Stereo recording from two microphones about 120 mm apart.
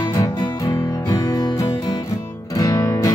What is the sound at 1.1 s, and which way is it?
Music, 35° left (ahead or behind).